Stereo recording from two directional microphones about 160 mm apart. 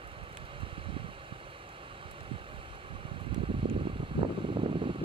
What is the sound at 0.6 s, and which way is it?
Vehicle, 35° right (ahead or behind).